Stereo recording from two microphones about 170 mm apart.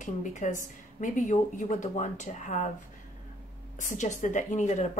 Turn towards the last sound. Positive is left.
turn(degrees=45)  # may be behind; listen again after turning